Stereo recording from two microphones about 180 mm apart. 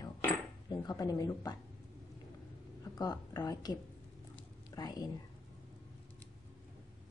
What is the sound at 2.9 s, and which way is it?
Speech, 20° left (ahead or behind).